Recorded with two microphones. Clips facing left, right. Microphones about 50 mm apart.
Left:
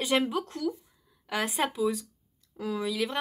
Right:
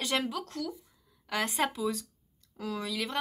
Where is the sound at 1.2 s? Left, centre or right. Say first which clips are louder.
Left 1 dB; centre.